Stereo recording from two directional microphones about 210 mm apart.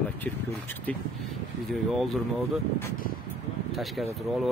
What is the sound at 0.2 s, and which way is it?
Speech, 10° left (ahead or behind).